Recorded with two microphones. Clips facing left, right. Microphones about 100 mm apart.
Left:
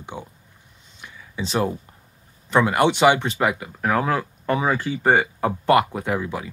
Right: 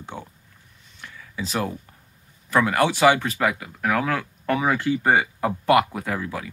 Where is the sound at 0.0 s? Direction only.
15° left (ahead or behind).